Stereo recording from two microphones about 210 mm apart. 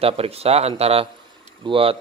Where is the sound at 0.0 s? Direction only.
30° right (ahead or behind).